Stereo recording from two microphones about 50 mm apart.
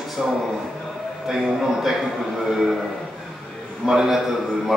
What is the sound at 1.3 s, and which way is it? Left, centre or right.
Speech, centre.